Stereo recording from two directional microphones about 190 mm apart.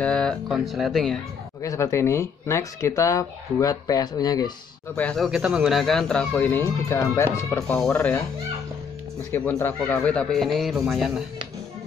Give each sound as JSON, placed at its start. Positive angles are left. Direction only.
{"t": 0.0, "sound": "speech", "side_deg": 5}
{"t": 1.6, "sound": "speech", "side_deg": 15}
{"t": 4.9, "sound": "speech", "side_deg": 5}
{"t": 7.6, "sound": "speech", "side_deg": 5}
{"t": 9.3, "sound": "speech", "side_deg": 15}